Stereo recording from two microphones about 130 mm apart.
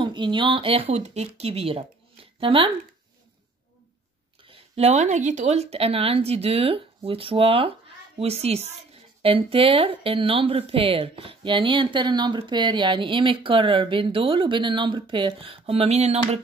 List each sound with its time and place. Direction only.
0.0 s speech: 40° right (ahead or behind)
4.5 s speech: 50° right (ahead or behind)